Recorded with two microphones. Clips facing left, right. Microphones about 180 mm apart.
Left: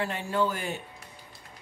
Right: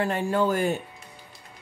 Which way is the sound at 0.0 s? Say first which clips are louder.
Right 4 dB; 45° right (ahead or behind).